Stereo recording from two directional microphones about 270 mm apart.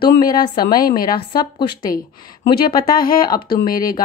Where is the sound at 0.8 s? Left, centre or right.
Left.